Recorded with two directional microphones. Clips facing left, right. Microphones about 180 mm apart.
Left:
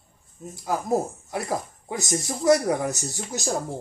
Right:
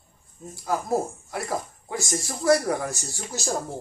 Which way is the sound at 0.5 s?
20° left (ahead or behind).